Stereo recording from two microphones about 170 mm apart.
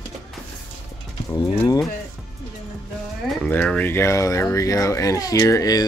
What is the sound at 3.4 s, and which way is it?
Speech, 10° left (ahead or behind).